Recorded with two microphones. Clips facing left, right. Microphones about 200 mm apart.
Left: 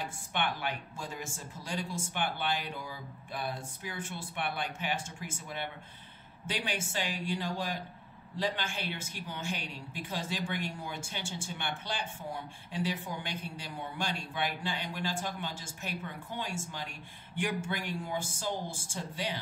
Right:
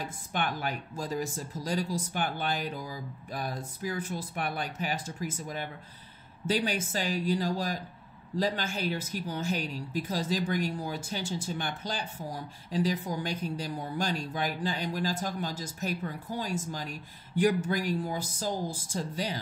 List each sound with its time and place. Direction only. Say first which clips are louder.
0.0 s speech: right 2 dB; 40° right (ahead or behind)